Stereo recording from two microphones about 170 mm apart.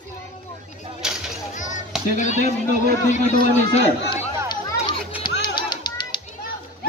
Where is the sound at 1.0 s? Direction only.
5° right (ahead or behind).